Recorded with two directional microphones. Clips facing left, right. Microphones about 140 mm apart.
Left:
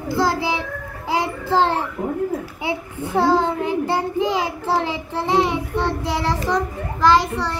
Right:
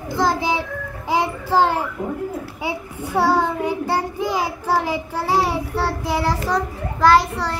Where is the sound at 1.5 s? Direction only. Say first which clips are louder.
Even; 10° right (ahead or behind).